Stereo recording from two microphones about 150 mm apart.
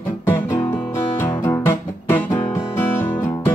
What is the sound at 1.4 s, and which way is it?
Music, 15° left (ahead or behind).